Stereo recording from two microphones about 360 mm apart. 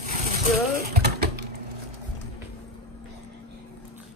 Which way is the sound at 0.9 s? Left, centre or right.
Right.